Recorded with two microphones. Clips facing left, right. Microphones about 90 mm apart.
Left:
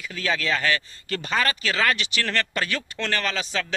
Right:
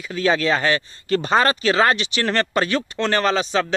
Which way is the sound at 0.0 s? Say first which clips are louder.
Right 7 dB; 30° right (ahead or behind).